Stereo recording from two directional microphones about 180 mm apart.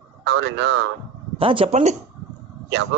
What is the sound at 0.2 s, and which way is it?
Speech, 80° right.